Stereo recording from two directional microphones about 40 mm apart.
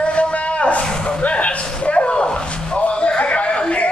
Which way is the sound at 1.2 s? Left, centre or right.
Left.